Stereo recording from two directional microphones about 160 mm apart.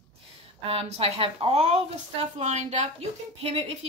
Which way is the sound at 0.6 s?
40° right (ahead or behind).